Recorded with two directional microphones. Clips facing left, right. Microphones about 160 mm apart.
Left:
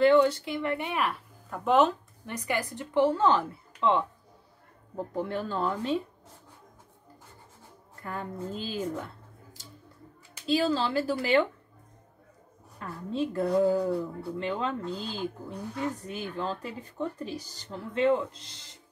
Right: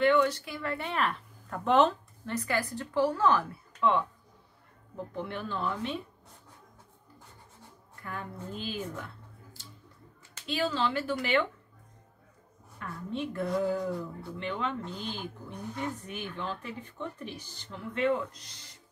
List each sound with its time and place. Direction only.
0.0 s speech: 30° left (ahead or behind)
4.9 s a woman's voice: 40° left (ahead or behind)
8.1 s a woman's voice: 35° left (ahead or behind)
10.4 s a woman's voice: 35° left (ahead or behind)
12.7 s a woman's voice: 35° left (ahead or behind)